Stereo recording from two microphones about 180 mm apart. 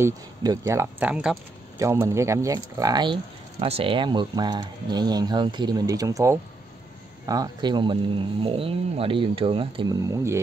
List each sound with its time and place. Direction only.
0.0 s speech: 20° right (ahead or behind)
1.8 s speech: 15° right (ahead or behind)
3.5 s speech: 35° right (ahead or behind); by 10.4 s 15° right (ahead or behind)